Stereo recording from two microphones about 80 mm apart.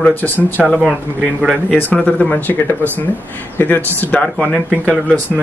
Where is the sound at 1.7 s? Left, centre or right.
Centre.